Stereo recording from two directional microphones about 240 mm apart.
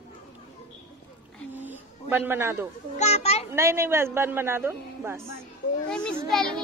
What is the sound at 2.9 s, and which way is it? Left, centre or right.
Speech, left.